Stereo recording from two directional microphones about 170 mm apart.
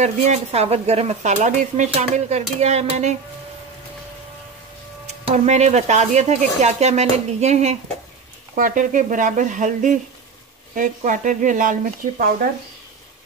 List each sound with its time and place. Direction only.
0.0 s speech: 40° right (ahead or behind)
5.0 s speech: 40° right (ahead or behind)
8.5 s speech: 55° right (ahead or behind)